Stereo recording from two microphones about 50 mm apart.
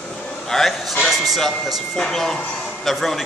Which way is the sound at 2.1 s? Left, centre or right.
Centre.